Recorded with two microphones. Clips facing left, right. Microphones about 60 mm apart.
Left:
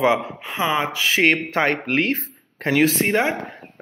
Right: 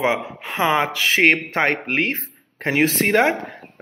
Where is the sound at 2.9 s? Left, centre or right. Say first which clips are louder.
Right 3 dB; right.